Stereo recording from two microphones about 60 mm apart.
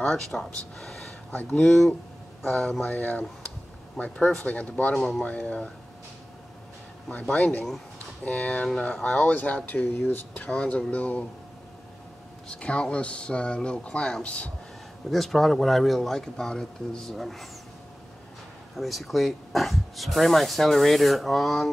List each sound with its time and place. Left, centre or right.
0.0 s speech: centre
1.3 s speech: left
1.6 s speech: centre
3.0 s speech: left
4.0 s speech: centre
4.4 s speech: left
4.9 s speech: centre
5.2 s speech: left
7.1 s speech: left
10.5 s speech: centre
12.4 s speech: centre
15.0 s speech: centre
18.8 s speech: centre